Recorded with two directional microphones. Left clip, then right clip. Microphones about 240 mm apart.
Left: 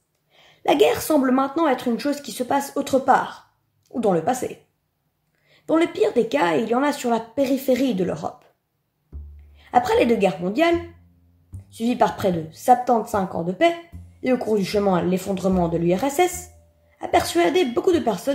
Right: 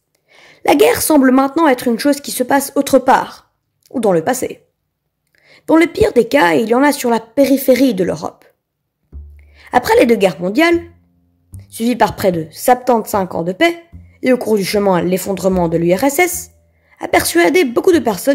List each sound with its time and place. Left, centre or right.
0.3 s a woman's voice: right
9.1 s music: centre
9.6 s speech: right